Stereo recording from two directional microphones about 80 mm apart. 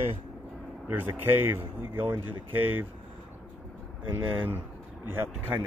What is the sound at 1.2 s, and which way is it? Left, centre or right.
Speech, right.